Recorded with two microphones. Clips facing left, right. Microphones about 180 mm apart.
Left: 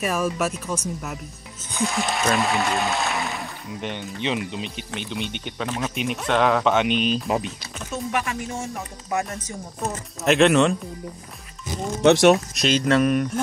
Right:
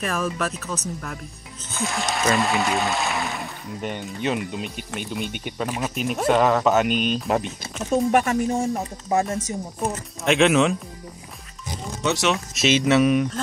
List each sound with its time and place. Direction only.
0.0 s speech: 10° left (ahead or behind)
4.6 s speech: 50° right (ahead or behind)
4.9 s speech: 5° right (ahead or behind)
7.9 s speech: 45° right (ahead or behind)
9.5 s speech: 15° right (ahead or behind)
10.2 s speech: centre (ahead or behind)
12.5 s speech: 5° right (ahead or behind)